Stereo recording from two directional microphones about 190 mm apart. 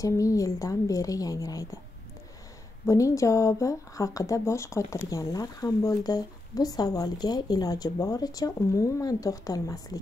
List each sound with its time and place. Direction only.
0.0 s a woman's voice: 15° left (ahead or behind)
2.9 s speech: 15° left (ahead or behind)